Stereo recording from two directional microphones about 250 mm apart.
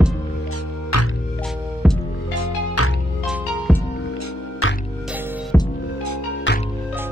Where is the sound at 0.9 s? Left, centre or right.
Left.